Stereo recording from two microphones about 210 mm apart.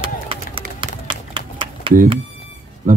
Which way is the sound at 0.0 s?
25° right (ahead or behind).